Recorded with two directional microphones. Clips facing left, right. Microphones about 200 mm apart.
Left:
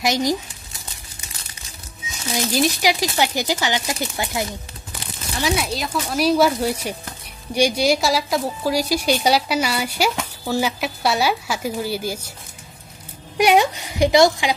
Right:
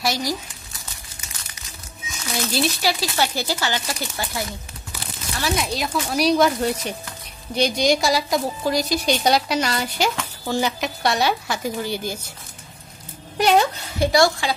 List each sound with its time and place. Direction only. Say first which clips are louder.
0.0 s speech: left 4 dB; 20° left (ahead or behind)
2.3 s a woman's voice: left 3 dB; 15° left (ahead or behind)
5.7 s a woman's voice: even; centre (ahead or behind)
13.4 s a woman's voice: left 2 dB; 10° left (ahead or behind)